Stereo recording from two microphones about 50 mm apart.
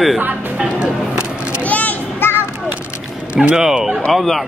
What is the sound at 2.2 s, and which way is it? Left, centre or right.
Children playing, left.